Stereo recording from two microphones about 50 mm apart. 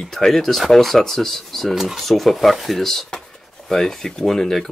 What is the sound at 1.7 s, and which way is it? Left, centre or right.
Speech, centre.